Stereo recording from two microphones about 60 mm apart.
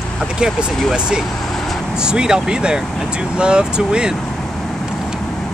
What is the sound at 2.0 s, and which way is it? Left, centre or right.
Speech, centre.